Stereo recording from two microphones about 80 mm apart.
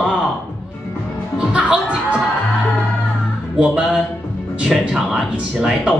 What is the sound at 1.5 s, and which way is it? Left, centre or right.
Music, centre.